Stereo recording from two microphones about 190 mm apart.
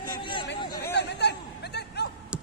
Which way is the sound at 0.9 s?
65° left (ahead or behind).